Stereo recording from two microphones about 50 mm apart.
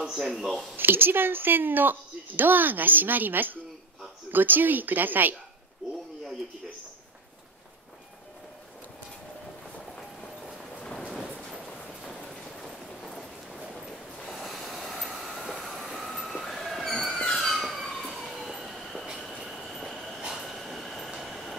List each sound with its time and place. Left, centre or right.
0.0 s speech: centre
0.7 s speech: right
10.8 s a sound: centre
15.1 s train: centre